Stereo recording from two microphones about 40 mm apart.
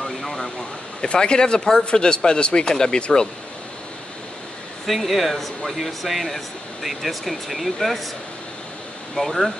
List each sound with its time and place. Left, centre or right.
0.2 s a sound: centre
1.0 s speech: left
4.8 s speech: centre
9.1 s speech: centre